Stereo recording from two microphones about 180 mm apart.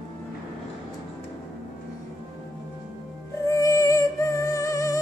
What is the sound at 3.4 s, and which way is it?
Music, 20° left (ahead or behind).